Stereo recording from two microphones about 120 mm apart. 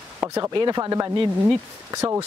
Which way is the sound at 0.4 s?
35° right (ahead or behind).